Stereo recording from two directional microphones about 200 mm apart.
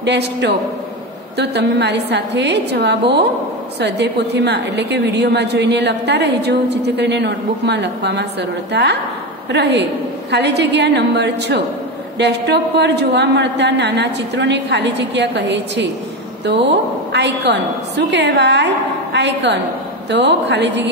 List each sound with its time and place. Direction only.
0.0 s a woman's voice: 60° right (ahead or behind)
17.1 s a woman's voice: 60° right (ahead or behind)